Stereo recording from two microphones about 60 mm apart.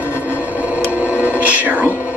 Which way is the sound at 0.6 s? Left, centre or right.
Right.